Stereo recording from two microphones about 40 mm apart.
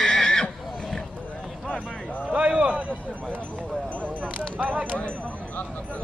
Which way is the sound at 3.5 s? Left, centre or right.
Left.